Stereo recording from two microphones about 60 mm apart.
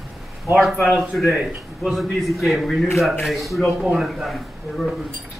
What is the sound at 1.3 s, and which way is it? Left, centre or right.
Speech, right.